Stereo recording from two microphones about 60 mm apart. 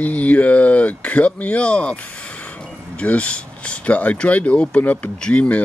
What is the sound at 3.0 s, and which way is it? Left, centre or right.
Speech, left.